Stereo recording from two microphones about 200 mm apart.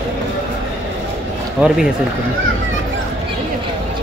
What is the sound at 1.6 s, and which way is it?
Speech, 5° right (ahead or behind).